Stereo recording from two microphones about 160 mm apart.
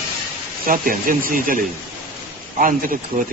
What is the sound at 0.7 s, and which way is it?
Speech, 60° right (ahead or behind).